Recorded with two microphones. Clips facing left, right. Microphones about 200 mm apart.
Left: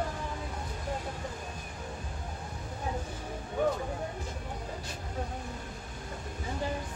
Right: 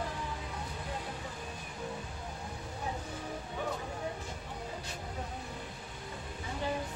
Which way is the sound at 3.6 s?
50° left (ahead or behind).